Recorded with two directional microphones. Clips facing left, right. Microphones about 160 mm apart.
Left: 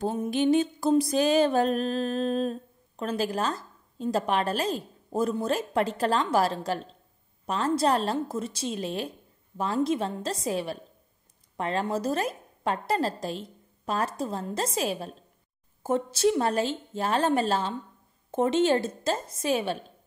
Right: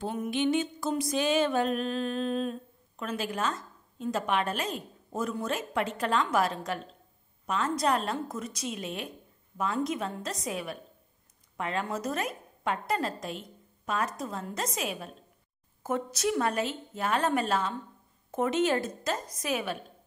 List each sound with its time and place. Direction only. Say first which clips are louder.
0.0 s music: left 4 dB; 35° left (ahead or behind)
15.8 s a woman's voice: left 6 dB; 30° left (ahead or behind)